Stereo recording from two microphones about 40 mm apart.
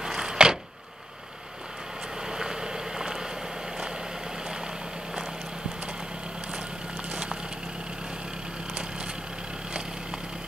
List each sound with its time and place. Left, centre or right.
0.0 s a sound: centre
2.2 s vehicle: centre
7.1 s vehicle: right